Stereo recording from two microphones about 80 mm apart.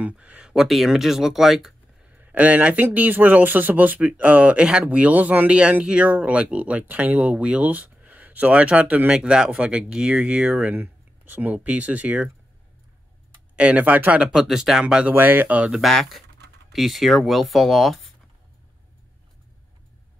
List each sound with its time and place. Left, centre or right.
0.0 s speech: centre
2.1 s speech: centre
13.6 s speech: centre
15.0 s speech: right
15.7 s speech: centre